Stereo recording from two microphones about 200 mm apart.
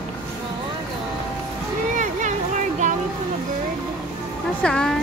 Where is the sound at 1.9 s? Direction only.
40° right (ahead or behind).